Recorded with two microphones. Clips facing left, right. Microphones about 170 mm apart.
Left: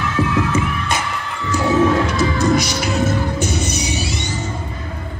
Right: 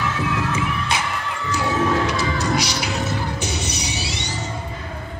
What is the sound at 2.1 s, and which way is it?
Music, 50° left (ahead or behind).